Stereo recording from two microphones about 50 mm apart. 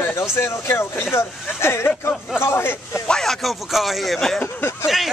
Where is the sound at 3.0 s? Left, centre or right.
Centre.